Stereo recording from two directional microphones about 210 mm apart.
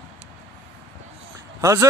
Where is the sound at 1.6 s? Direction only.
15° right (ahead or behind).